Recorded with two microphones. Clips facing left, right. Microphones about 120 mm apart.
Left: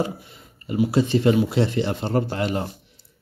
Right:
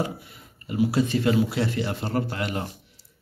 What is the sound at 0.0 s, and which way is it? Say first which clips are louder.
Speech: left 3 dB; 25° left (ahead or behind).